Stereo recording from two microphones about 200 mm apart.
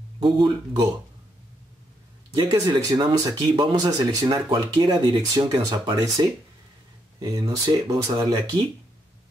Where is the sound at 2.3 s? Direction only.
20° right (ahead or behind).